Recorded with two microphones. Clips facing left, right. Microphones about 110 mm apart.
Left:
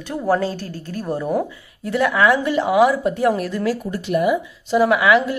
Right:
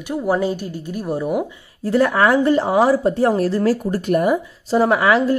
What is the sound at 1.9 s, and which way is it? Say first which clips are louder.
A woman's voice: right 2 dB; 40° right (ahead or behind).